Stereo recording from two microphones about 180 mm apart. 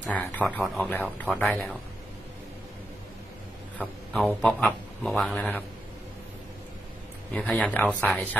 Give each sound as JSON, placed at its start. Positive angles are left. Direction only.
{"t": 0.0, "sound": "speech", "side_deg": 10}
{"t": 3.7, "sound": "speech", "side_deg": 5}
{"t": 7.3, "sound": "speech", "side_deg": 5}